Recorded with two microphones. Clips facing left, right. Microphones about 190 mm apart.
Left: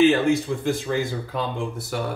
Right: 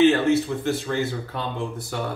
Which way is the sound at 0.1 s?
15° left (ahead or behind).